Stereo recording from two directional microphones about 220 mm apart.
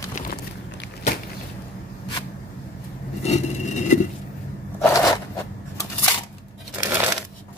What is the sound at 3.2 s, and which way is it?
Vehicle, 30° left (ahead or behind).